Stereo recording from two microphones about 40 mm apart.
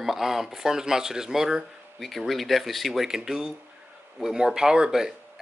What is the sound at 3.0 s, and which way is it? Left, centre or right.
Speech, centre.